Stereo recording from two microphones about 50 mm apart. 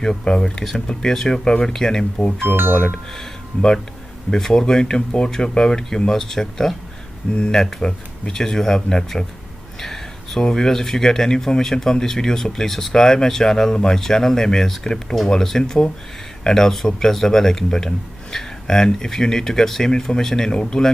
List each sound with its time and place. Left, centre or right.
0.0 s speech: centre
2.5 s speech: right
3.5 s speech: left
4.3 s speech: centre
9.8 s a sound: centre
10.4 s speech: centre